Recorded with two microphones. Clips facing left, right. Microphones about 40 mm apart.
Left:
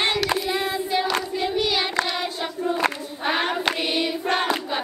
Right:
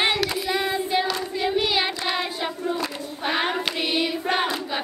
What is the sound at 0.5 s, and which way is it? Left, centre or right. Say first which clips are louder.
Child singing: right 1 dB; centre.